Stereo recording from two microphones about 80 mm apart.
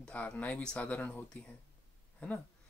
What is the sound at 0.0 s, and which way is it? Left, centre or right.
Speech, centre.